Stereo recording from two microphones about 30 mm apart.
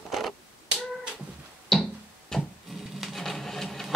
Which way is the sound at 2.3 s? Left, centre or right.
Centre.